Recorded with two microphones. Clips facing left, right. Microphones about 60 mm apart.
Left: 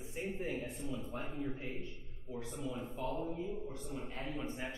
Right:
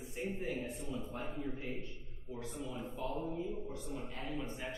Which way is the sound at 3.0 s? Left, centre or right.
Left.